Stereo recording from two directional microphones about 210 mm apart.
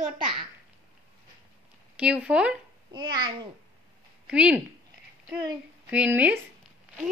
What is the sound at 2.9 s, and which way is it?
Speech, 20° right (ahead or behind).